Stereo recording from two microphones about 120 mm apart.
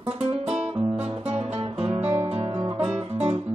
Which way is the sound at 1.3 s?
55° right (ahead or behind).